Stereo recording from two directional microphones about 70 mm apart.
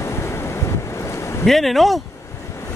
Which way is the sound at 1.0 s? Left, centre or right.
Left.